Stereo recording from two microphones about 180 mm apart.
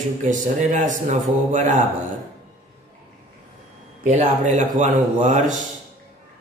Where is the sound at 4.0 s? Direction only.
40° right (ahead or behind).